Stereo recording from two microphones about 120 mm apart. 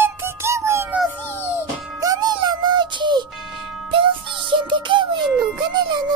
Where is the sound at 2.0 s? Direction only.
35° right (ahead or behind).